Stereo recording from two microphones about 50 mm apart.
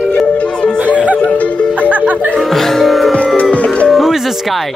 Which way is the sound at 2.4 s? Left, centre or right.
Centre.